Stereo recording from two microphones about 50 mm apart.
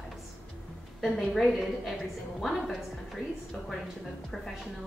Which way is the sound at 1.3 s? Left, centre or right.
Centre.